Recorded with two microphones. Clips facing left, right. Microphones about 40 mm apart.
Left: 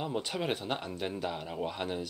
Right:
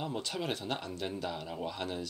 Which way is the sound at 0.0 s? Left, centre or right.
Centre.